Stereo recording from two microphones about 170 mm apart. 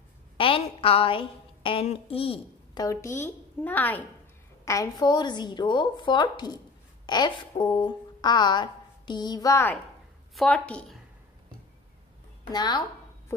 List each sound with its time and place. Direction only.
0.4 s a woman's voice: 30° left (ahead or behind)
2.8 s a woman's voice: 20° left (ahead or behind)
4.6 s a woman's voice: 20° left (ahead or behind)
10.3 s a woman's voice: 5° left (ahead or behind)
12.4 s a woman's voice: 25° left (ahead or behind)